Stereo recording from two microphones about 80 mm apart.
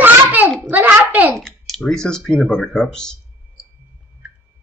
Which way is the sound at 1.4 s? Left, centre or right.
Centre.